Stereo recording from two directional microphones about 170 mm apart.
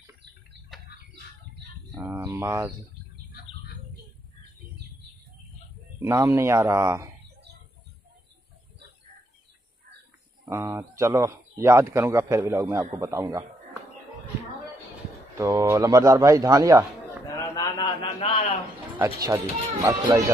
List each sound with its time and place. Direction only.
2.1 s speech: 20° right (ahead or behind)
5.9 s speech: 15° right (ahead or behind)
10.4 s a man's voice: 15° right (ahead or behind)
15.3 s a man's voice: 15° right (ahead or behind)
17.3 s a sound: 25° left (ahead or behind)
19.2 s a man's voice: 20° right (ahead or behind)